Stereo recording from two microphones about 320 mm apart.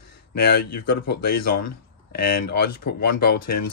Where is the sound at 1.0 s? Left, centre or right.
Left.